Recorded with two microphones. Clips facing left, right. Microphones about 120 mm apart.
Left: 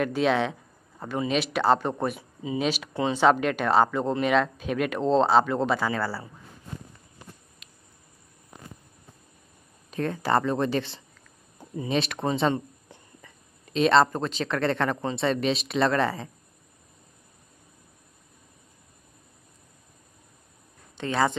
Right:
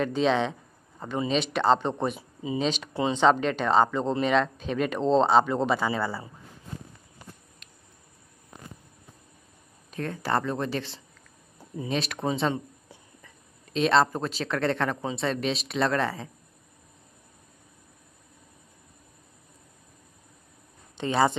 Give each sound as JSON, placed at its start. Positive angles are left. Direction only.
{"t": 0.0, "sound": "speech", "side_deg": 5}
{"t": 5.9, "sound": "speech", "side_deg": -20}
{"t": 7.6, "sound": "a sound", "side_deg": 5}
{"t": 9.8, "sound": "speech", "side_deg": 0}
{"t": 11.7, "sound": "a sound", "side_deg": 0}
{"t": 13.7, "sound": "speech", "side_deg": 0}
{"t": 21.0, "sound": "speech", "side_deg": -5}